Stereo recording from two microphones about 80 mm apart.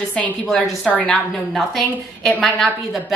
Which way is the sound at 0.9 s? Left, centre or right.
Centre.